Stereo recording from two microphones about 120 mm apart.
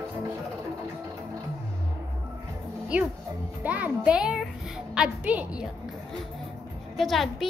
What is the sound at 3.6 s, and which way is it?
A child's voice, 10° right (ahead or behind).